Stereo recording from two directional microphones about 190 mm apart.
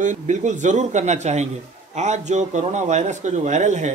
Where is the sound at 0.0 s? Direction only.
40° right (ahead or behind).